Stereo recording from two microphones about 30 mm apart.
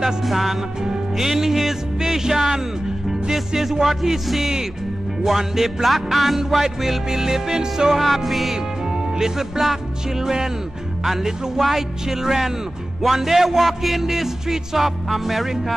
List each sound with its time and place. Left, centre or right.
0.2 s music: centre
3.1 s speech: centre
3.8 s music: centre
5.9 s music: centre
8.0 s music: centre
8.9 s music: centre
15.0 s music: centre